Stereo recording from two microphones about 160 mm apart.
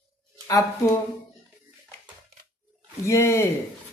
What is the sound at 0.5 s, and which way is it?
Speech, 20° left (ahead or behind).